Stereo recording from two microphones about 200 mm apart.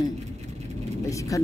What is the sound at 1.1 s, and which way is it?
Speech, 15° left (ahead or behind).